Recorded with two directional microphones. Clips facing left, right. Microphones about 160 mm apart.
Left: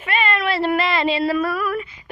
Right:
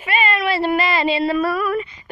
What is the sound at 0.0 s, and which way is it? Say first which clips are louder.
Cat: right 1 dB; 5° right (ahead or behind).